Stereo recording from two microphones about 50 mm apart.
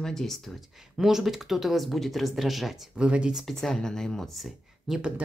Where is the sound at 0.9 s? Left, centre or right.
Centre.